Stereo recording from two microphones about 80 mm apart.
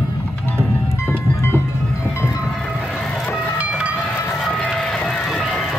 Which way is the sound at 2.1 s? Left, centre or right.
Left.